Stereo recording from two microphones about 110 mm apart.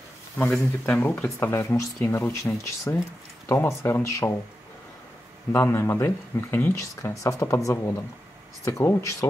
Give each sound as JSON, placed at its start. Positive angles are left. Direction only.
{"t": 0.4, "sound": "speech", "side_deg": 15}
{"t": 5.5, "sound": "speech", "side_deg": 20}